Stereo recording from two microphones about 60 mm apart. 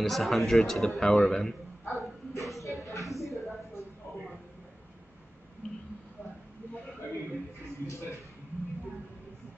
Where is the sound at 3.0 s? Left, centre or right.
Centre.